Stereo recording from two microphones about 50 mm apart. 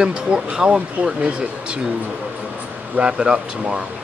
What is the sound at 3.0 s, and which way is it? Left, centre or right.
Speech, centre.